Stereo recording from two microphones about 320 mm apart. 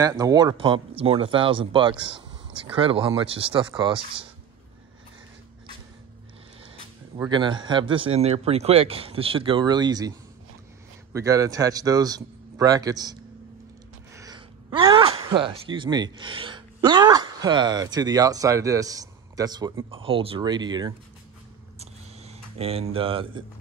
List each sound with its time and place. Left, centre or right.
0.0 s speech: centre
7.2 s speech: centre
11.1 s speech: centre
21.7 s a sound: centre